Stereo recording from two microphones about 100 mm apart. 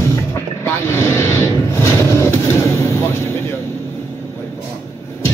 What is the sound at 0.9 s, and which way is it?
Vehicle, 25° left (ahead or behind).